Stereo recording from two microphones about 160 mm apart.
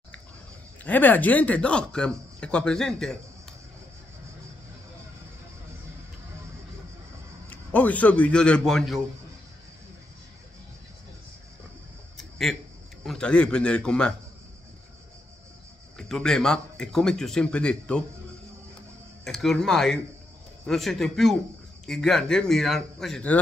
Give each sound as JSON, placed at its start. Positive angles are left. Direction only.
{"t": 0.8, "sound": "speech", "side_deg": 10}
{"t": 7.4, "sound": "a man's voice", "side_deg": 10}
{"t": 12.2, "sound": "a sound", "side_deg": 0}
{"t": 13.0, "sound": "a man's voice", "side_deg": 5}
{"t": 16.0, "sound": "a man's voice", "side_deg": 5}
{"t": 19.2, "sound": "a man's voice", "side_deg": 0}